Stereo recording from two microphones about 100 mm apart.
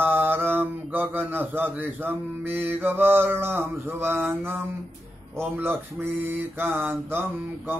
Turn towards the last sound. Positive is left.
turn(degrees=-20)  # may be behind; listen again after turning